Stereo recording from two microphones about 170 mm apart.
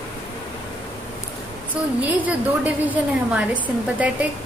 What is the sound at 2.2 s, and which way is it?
A woman's voice, 10° right (ahead or behind).